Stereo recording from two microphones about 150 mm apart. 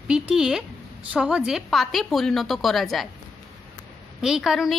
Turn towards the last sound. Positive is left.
turn(degrees=0)  # may be behind; listen again after turning